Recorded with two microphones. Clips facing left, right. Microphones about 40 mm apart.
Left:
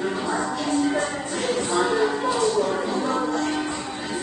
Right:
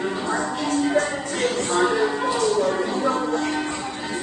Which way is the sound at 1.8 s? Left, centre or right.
Centre.